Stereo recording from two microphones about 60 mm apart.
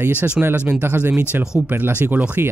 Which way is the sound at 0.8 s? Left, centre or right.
Right.